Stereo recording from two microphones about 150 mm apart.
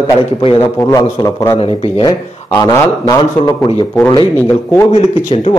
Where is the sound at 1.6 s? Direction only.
40° left (ahead or behind).